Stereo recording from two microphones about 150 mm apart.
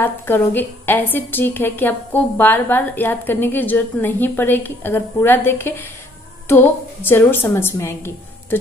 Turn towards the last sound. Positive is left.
turn(degrees=15)  # may be behind; listen again after turning